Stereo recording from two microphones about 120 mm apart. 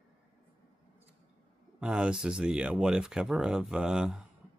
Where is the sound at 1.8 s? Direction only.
10° right (ahead or behind).